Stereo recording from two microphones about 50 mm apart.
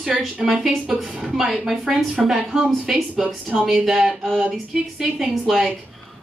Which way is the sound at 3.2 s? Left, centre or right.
Right.